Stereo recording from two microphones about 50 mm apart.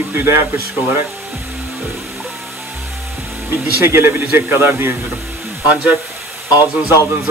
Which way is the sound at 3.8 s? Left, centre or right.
Right.